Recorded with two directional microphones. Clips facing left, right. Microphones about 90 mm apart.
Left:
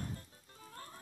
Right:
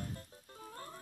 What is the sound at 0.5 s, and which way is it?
Music, 30° right (ahead or behind).